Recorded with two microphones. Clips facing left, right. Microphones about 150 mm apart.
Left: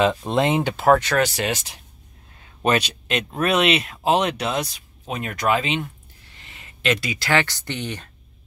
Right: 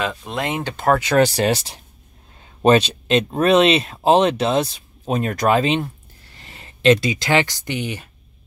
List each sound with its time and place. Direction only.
0.2 s speech: 25° left (ahead or behind)
1.1 s speech: 35° right (ahead or behind); by 8.1 s 10° right (ahead or behind)